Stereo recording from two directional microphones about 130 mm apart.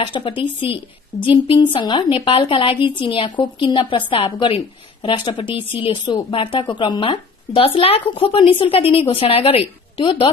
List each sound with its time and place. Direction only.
0.0 s a woman's voice: 40° left (ahead or behind)